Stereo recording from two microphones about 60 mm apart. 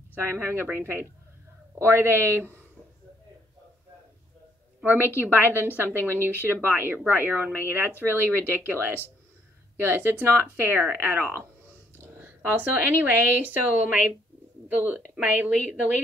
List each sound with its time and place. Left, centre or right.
0.1 s speech: right
4.8 s speech: right
12.4 s speech: right
15.2 s speech: right